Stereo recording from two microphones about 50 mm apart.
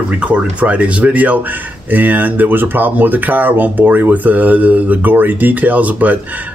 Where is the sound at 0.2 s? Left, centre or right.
Right.